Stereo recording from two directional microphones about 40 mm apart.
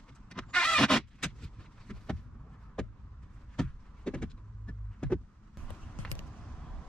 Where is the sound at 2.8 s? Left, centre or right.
Centre.